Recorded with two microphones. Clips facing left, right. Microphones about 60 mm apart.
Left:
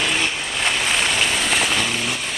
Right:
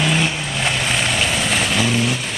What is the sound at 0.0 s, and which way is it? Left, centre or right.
Vehicle, centre.